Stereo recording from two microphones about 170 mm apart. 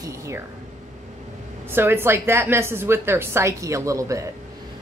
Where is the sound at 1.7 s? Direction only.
15° right (ahead or behind).